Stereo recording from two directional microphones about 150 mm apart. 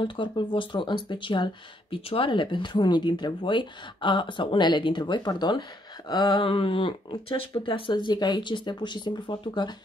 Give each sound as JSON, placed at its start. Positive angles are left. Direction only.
{"t": 0.0, "sound": "speech", "side_deg": 35}